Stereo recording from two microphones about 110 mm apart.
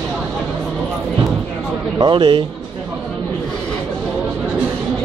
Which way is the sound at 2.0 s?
45° right (ahead or behind).